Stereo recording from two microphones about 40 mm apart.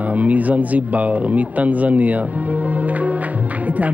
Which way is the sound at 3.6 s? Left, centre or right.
Right.